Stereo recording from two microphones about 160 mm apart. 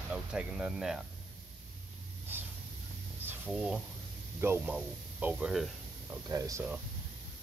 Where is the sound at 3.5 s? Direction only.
5° right (ahead or behind).